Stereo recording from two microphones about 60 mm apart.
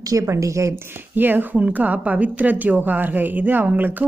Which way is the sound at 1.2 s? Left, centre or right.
Right.